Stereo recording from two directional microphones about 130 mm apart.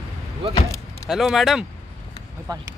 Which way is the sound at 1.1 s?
Centre (ahead or behind).